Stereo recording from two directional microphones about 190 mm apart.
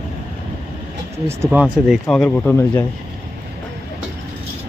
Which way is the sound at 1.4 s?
5° right (ahead or behind).